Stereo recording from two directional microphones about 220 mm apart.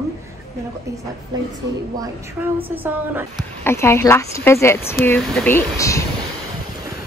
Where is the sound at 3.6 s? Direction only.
10° left (ahead or behind).